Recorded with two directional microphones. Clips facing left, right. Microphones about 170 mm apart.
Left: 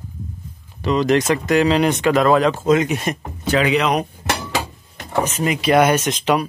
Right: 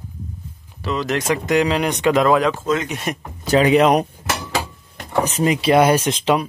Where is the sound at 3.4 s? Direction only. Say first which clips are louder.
Right 4 dB; 40° right (ahead or behind).